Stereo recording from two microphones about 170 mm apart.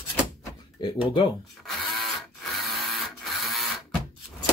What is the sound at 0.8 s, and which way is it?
Speech, 25° left (ahead or behind).